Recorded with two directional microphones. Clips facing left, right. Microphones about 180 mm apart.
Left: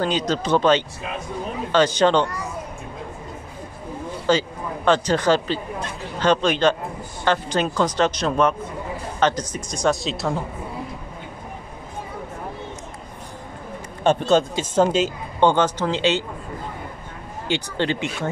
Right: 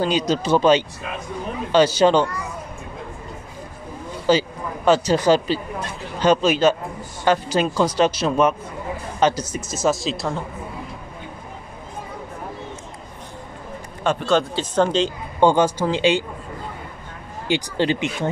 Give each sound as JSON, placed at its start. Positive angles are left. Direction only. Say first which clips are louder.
{"t": 0.0, "sound": "speech", "louder": "right 2 dB", "side_deg": -10}
{"t": 4.3, "sound": "a woman's voice", "louder": "right 2 dB", "side_deg": -10}
{"t": 14.0, "sound": "a man's voice", "louder": "left 2 dB", "side_deg": 20}
{"t": 14.6, "sound": "speech", "louder": "even", "side_deg": 5}
{"t": 15.4, "sound": "speech", "louder": "right 2 dB", "side_deg": -10}
{"t": 17.5, "sound": "speech", "louder": "right 3 dB", "side_deg": -15}